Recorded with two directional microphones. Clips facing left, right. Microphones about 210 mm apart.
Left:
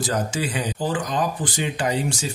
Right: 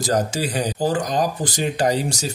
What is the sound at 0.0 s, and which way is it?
Speech, 40° right (ahead or behind).